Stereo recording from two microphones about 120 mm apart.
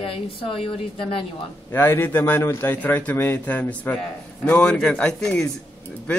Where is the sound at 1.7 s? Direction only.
20° left (ahead or behind).